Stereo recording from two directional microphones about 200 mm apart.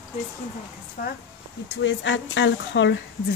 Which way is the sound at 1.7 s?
65° left (ahead or behind).